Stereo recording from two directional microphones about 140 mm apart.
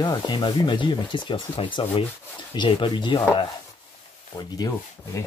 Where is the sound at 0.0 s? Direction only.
30° left (ahead or behind).